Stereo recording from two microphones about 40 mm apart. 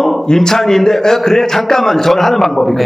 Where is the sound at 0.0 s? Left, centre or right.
Centre.